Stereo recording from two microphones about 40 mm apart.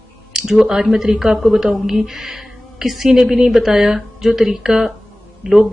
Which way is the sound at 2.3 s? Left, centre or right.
Centre.